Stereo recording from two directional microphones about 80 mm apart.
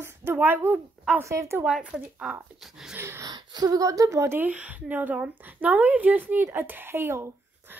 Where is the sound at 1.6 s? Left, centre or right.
Centre.